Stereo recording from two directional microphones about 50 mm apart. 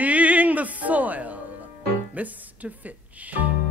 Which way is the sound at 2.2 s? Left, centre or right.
Right.